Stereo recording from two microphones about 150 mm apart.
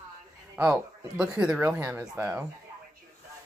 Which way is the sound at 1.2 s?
5° right (ahead or behind).